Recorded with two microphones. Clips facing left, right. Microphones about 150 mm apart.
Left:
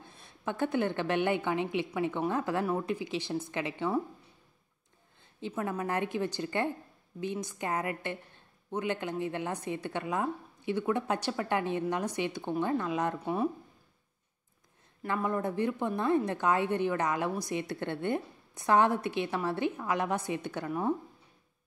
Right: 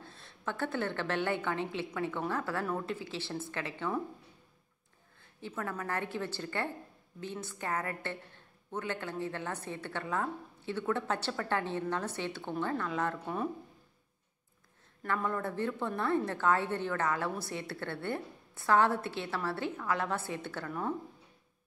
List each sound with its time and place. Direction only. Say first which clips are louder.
0.0 s a woman's voice: left 2 dB; 15° left (ahead or behind)
5.4 s a woman's voice: left 5 dB; 20° left (ahead or behind)
15.0 s a woman's voice: left 3 dB; 15° left (ahead or behind)